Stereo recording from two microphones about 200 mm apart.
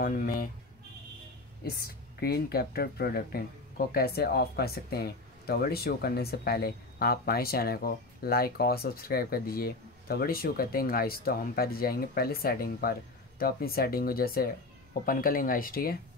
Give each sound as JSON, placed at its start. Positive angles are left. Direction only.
{"t": 0.0, "sound": "a woman's voice", "side_deg": 45}
{"t": 1.6, "sound": "a woman's voice", "side_deg": 50}